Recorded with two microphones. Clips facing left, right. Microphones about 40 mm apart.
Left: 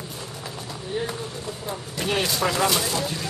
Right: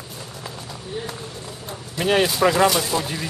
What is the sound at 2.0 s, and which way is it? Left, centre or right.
Speech, right.